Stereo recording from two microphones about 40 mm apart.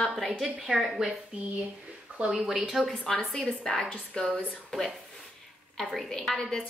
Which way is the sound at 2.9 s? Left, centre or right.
Centre.